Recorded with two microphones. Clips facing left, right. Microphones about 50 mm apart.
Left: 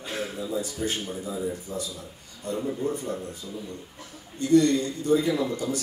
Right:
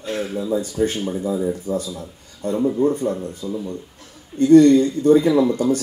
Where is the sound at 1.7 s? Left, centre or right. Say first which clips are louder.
Right 10 dB; right.